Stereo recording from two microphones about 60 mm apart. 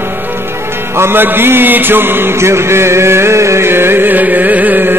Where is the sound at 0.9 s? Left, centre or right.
Right.